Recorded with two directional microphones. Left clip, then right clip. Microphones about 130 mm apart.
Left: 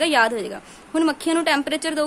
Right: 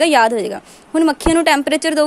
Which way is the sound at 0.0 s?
40° right (ahead or behind).